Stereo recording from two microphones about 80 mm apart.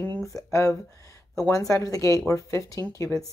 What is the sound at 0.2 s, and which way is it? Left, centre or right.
Speech, left.